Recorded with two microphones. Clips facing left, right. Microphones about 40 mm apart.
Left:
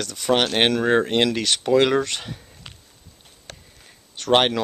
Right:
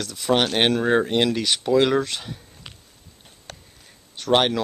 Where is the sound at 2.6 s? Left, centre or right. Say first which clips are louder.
Even; centre.